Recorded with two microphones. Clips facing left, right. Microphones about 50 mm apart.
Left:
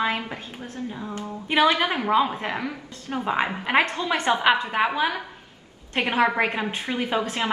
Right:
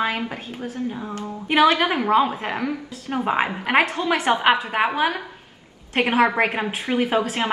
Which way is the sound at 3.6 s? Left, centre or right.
Centre.